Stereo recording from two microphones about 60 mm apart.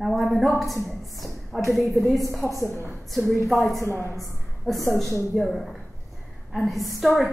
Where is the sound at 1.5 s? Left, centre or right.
Centre.